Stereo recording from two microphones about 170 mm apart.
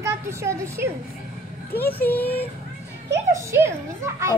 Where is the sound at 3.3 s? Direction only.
15° right (ahead or behind).